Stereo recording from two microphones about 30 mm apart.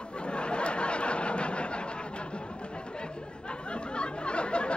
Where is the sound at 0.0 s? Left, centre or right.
Left.